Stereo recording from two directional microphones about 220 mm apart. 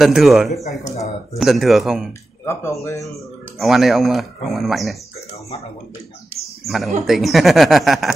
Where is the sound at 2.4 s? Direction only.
15° left (ahead or behind).